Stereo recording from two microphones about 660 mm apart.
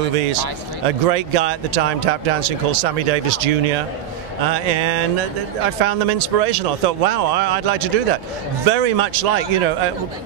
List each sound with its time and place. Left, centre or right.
0.8 s speech: right